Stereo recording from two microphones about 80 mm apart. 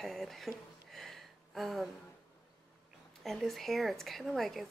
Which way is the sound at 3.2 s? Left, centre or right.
Centre.